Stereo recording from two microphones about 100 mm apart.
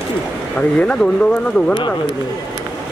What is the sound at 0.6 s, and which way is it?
Speech, 10° left (ahead or behind).